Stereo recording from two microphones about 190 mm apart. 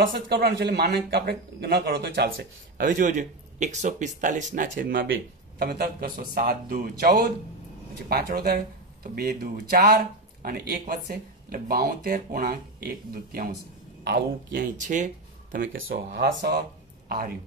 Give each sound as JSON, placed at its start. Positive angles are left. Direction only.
{"t": 0.0, "sound": "speech", "side_deg": -55}
{"t": 4.7, "sound": "speech", "side_deg": -70}
{"t": 5.6, "sound": "speech", "side_deg": -50}
{"t": 14.8, "sound": "speech", "side_deg": -40}
{"t": 15.9, "sound": "speech", "side_deg": -55}